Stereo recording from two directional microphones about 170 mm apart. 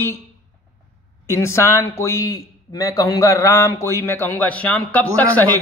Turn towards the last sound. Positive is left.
turn(degrees=10)  # may be behind; listen again after turning